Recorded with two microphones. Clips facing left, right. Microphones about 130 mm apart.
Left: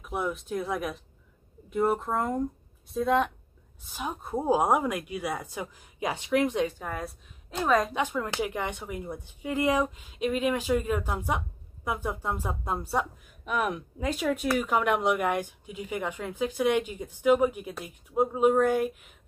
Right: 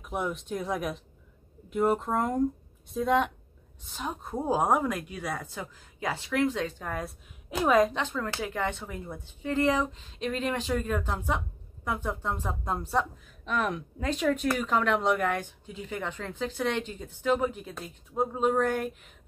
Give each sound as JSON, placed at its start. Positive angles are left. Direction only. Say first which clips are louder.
{"t": 0.1, "sound": "speech", "louder": "left 1 dB", "side_deg": 0}
{"t": 6.8, "sound": "speech", "louder": "even", "side_deg": 5}
{"t": 7.9, "sound": "speech", "louder": "left 2 dB", "side_deg": 15}